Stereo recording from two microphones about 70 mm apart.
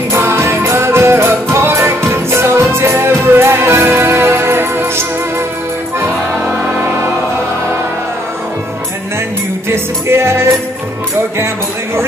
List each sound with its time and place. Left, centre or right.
0.1 s music: right
9.7 s music: right